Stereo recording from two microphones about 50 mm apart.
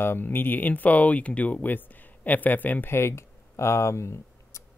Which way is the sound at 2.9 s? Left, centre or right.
Left.